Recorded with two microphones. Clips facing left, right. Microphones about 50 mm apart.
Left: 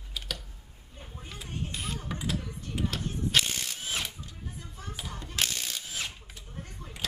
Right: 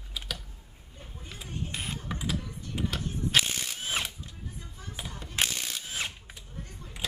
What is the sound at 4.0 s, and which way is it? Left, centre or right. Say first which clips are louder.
Drill: right 2 dB; right.